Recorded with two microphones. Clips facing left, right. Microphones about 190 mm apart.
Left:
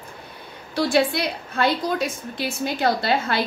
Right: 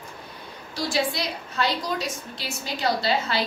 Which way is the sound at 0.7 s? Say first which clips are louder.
Left 6 dB; 60° left (ahead or behind).